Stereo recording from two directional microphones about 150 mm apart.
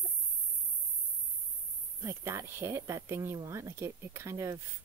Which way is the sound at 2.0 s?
20° right (ahead or behind).